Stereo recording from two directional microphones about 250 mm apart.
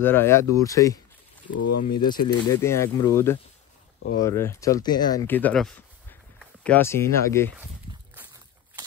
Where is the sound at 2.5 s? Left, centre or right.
Centre.